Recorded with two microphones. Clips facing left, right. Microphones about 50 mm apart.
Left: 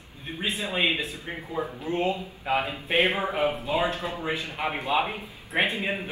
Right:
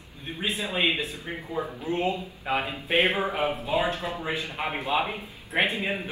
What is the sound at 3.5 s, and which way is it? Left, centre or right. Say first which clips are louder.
Speech: even; left.